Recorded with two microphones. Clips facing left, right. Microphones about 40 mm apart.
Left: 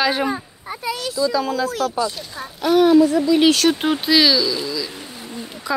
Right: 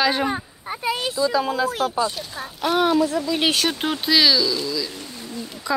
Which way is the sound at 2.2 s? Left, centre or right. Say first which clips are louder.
Even; centre.